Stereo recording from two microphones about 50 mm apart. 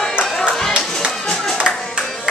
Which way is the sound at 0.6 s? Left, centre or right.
Centre.